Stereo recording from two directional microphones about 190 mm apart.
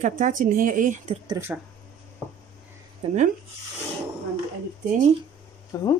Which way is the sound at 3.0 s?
30° right (ahead or behind).